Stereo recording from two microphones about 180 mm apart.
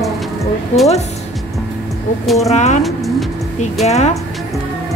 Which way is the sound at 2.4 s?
40° left (ahead or behind).